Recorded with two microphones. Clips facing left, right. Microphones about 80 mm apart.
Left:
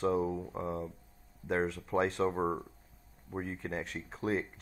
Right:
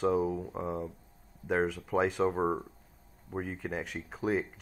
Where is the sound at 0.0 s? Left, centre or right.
Centre.